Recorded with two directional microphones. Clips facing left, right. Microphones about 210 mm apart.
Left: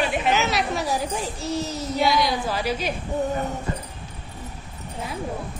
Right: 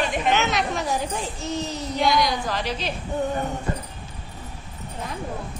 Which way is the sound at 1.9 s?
Centre (ahead or behind).